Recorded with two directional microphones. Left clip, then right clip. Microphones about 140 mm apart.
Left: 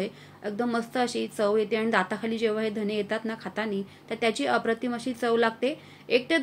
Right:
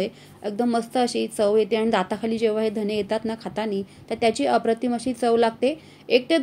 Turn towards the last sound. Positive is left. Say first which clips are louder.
# right 5 dB
turn(degrees=-40)  # may be behind; listen again after turning